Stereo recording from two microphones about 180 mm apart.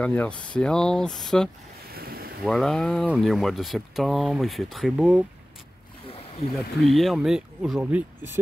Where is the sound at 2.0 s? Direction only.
55° right (ahead or behind).